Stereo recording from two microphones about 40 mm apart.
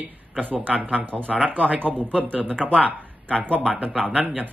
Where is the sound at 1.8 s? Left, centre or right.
Right.